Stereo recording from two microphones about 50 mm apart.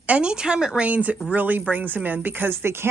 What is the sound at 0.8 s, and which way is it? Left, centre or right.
Speech, right.